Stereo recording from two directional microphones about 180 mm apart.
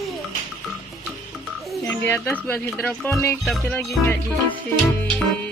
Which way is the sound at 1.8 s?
10° left (ahead or behind).